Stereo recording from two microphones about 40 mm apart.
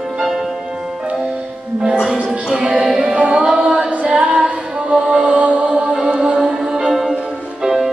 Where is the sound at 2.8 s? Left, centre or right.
Centre.